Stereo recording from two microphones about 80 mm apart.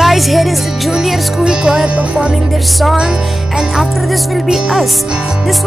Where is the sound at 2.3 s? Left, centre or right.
Centre.